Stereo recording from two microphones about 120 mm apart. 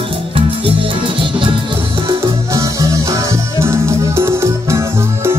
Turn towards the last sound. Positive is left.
turn(degrees=-25)  # may be behind; listen again after turning